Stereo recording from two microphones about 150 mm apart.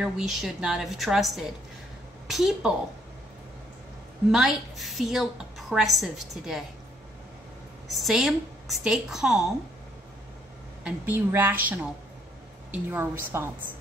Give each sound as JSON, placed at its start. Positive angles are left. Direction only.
{"t": 0.0, "sound": "a woman's voice", "side_deg": 0}
{"t": 4.3, "sound": "a woman's voice", "side_deg": 0}
{"t": 7.9, "sound": "a woman's voice", "side_deg": 0}
{"t": 10.8, "sound": "a woman's voice", "side_deg": -10}